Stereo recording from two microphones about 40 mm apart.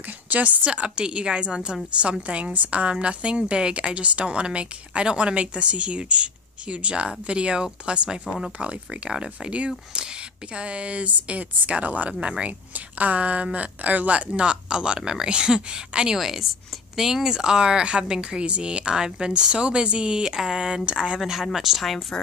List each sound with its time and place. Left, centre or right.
0.3 s a woman's voice: right
0.7 s a woman's voice: right
12.2 s a woman's voice: right
12.7 s a woman's voice: right
16.2 s a woman's voice: centre; by 21.2 s right
21.2 s speech: centre